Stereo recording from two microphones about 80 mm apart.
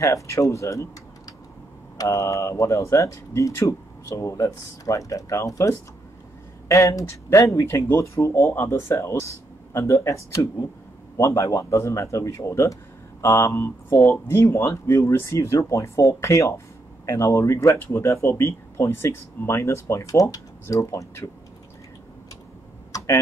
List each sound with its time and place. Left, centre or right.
0.0 s speech: left
2.0 s speech: left
22.9 s computer keyboard: left